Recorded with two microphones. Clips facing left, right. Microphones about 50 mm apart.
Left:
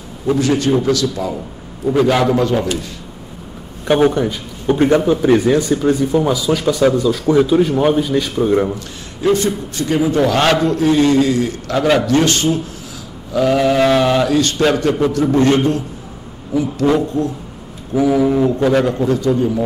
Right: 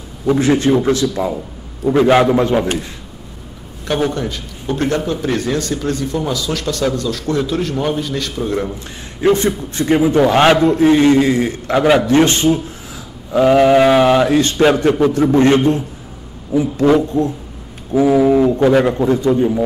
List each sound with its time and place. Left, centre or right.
0.4 s a man's voice: right
3.8 s speech: centre
8.7 s a man's voice: right
17.9 s a man's voice: right
18.3 s a man's voice: centre